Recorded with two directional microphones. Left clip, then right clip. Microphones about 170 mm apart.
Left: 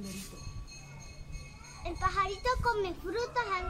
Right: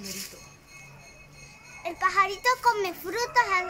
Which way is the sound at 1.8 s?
65° right (ahead or behind).